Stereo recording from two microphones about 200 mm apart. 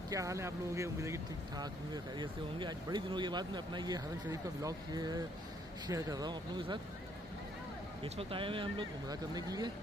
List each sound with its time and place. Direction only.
0.1 s speech: 15° right (ahead or behind)
8.0 s speech: 25° right (ahead or behind)